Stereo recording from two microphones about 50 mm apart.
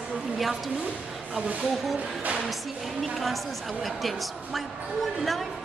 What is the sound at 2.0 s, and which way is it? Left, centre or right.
Music, right.